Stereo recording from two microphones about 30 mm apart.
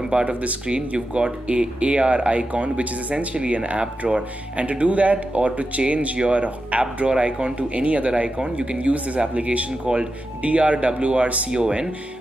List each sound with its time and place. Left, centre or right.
0.1 s speech: right
0.7 s speech: right